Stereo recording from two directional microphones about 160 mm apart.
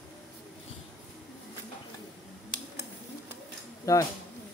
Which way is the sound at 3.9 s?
20° left (ahead or behind).